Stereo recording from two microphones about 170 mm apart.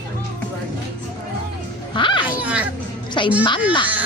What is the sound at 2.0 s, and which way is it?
Music, 30° left (ahead or behind).